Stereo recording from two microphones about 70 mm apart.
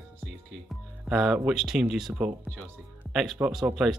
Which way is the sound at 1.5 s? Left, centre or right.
Centre.